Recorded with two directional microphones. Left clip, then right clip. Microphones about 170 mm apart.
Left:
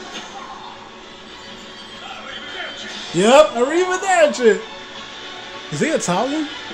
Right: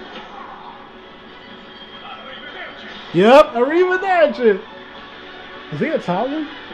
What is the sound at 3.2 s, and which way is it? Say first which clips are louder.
Speech: right 2 dB; 25° right (ahead or behind).